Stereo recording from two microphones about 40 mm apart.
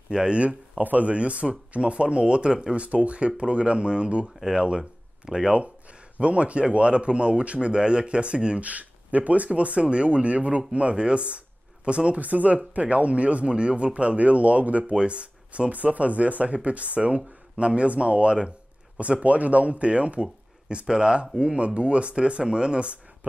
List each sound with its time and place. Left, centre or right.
0.1 s speech: right
0.4 s speech: right
2.7 s speech: right
8.6 s speech: right
12.2 s speech: right